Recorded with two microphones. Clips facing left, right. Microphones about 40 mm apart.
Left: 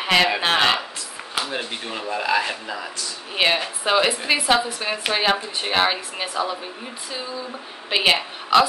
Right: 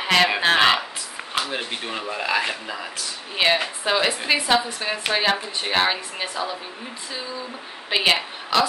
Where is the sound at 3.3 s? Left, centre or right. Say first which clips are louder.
Even; centre.